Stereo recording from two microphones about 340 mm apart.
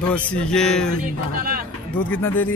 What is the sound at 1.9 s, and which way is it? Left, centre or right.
Speech, centre.